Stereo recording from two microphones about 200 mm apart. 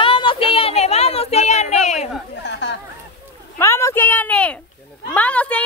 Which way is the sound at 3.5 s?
15° left (ahead or behind).